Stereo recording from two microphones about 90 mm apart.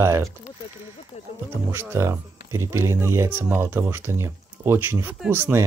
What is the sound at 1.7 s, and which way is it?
Speech, 30° right (ahead or behind).